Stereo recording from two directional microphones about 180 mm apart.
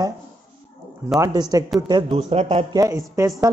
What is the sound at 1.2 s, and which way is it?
Speech, 20° right (ahead or behind).